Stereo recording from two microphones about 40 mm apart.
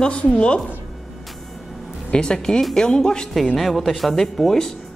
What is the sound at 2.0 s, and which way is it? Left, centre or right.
Speech, left.